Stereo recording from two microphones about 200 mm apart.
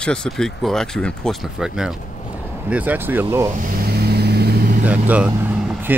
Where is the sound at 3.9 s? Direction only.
50° right (ahead or behind).